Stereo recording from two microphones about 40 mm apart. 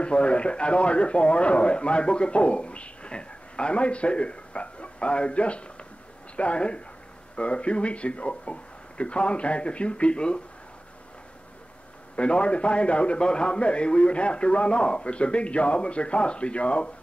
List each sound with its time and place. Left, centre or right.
0.0 s a man's voice: left
12.2 s a man's voice: left